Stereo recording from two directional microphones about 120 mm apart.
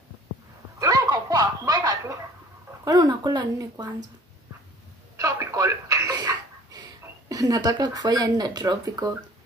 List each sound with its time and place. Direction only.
0.7 s dog: 30° right (ahead or behind)
2.8 s speech: 30° right (ahead or behind)
5.1 s telephone: 25° right (ahead or behind)